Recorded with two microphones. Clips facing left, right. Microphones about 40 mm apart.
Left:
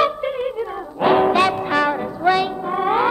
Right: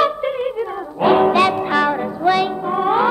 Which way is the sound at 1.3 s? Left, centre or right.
Right.